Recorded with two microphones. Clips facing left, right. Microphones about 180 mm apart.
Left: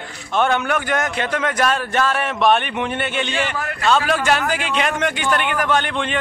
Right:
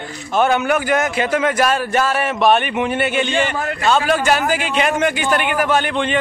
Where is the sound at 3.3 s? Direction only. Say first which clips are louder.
Right 4 dB; 25° right (ahead or behind).